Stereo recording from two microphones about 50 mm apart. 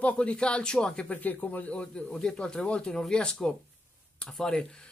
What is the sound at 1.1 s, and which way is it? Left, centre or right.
Speech, left.